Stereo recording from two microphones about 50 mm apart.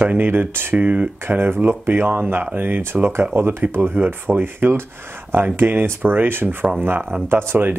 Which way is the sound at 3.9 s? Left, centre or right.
Right.